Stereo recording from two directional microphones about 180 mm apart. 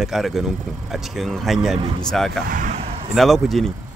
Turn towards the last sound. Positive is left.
turn(degrees=0)  # may be behind; listen again after turning